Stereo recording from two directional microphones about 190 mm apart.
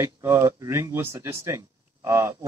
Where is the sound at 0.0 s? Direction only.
15° right (ahead or behind).